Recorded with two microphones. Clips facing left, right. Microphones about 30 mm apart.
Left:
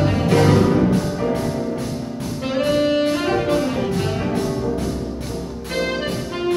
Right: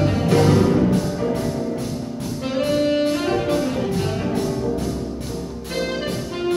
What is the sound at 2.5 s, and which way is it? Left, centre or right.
Music, centre.